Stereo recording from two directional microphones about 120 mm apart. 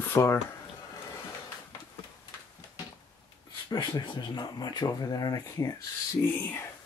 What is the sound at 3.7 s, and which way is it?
Speech, 40° left (ahead or behind).